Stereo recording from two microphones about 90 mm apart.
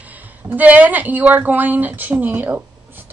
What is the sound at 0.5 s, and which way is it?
A woman's voice, 20° right (ahead or behind).